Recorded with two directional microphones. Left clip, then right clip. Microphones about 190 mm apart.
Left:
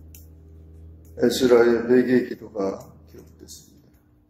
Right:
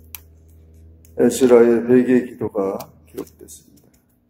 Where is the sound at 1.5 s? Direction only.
35° right (ahead or behind).